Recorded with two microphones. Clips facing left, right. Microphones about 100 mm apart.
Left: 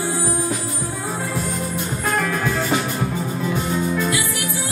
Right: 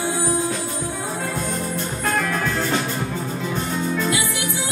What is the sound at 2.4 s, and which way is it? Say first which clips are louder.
Music: left 1 dB; 15° left (ahead or behind).